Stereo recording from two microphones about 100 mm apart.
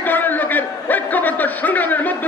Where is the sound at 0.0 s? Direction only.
20° left (ahead or behind).